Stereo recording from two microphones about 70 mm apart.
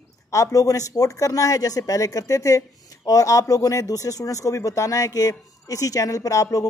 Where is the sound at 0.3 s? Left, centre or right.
Left.